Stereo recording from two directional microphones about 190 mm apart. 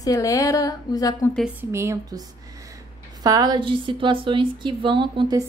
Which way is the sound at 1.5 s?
15° right (ahead or behind).